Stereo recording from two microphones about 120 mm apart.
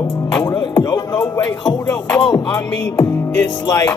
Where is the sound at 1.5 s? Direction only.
40° left (ahead or behind).